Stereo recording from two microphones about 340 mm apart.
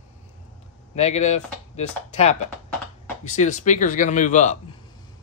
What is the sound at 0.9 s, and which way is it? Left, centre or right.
Speech, centre.